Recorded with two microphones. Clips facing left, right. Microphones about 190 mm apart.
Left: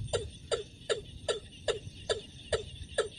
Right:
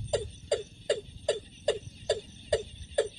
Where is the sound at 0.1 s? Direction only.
20° right (ahead or behind).